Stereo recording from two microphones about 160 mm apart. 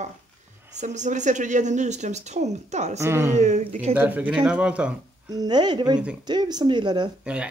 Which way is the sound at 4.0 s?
10° right (ahead or behind).